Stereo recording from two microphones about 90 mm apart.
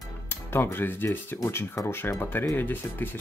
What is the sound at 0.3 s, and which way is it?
Speech, 25° left (ahead or behind).